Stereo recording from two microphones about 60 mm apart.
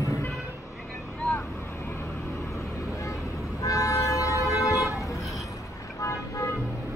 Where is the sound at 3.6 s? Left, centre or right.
Left.